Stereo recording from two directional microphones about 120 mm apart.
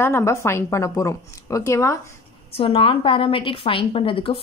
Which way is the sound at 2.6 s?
50° left (ahead or behind).